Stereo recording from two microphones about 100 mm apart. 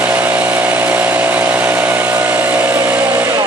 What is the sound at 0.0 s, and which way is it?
Power tool, 15° right (ahead or behind).